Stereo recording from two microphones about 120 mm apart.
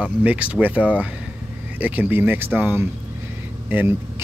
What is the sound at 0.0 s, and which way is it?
Speech, 10° right (ahead or behind).